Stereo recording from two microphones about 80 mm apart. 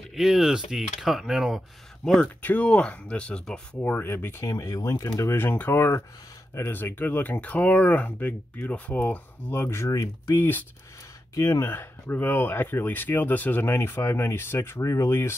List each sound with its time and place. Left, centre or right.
0.1 s speech: centre
2.2 s speech: centre
3.8 s speech: left
4.5 s speech: left
5.3 s speech: left
10.3 s speech: left
11.3 s speech: left